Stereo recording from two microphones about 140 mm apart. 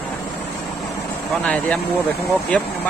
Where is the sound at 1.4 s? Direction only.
10° left (ahead or behind).